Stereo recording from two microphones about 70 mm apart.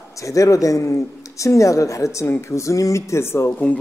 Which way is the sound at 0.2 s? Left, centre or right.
Left.